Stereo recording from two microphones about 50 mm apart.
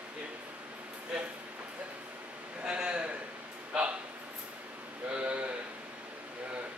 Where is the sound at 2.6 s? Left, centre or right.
Right.